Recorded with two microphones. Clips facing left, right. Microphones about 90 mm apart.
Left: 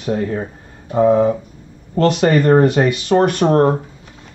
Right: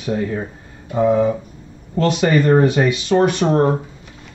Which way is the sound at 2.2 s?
50° left (ahead or behind).